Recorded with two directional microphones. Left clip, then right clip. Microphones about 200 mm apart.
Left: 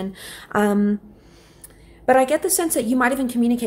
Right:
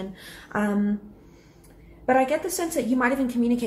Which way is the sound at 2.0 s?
45° left (ahead or behind).